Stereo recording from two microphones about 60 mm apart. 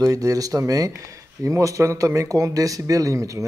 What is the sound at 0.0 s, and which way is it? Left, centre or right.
Speech, right.